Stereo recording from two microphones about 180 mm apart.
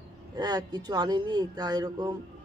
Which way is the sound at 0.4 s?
20° right (ahead or behind).